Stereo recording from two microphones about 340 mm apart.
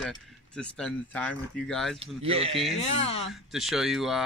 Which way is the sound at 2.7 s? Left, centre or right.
Centre.